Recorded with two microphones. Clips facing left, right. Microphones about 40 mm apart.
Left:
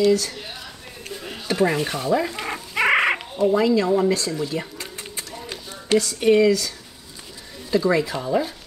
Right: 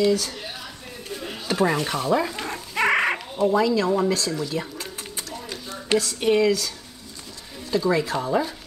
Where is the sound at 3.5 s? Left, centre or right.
Centre.